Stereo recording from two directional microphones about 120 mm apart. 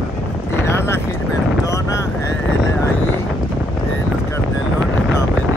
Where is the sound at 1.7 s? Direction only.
25° left (ahead or behind).